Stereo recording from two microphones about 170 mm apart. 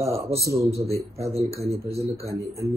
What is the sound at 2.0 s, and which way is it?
Speech, 65° right (ahead or behind).